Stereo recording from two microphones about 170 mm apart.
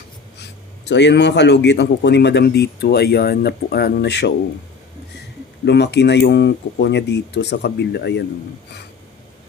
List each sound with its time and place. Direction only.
0.4 s a man's voice: 90° left
5.7 s a man's voice: 90° left